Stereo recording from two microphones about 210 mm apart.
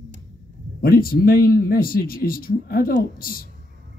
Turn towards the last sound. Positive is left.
turn(degrees=45)  # may be behind; listen again after turning